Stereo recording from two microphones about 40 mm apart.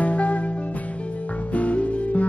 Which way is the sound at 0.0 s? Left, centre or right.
Left.